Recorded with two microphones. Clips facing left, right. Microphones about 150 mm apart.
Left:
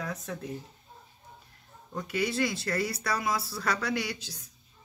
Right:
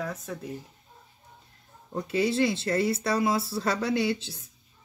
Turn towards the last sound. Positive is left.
turn(degrees=-25)  # may be behind; listen again after turning